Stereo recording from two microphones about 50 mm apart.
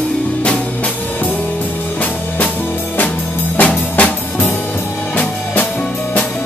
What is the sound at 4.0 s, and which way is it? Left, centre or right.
Music, left.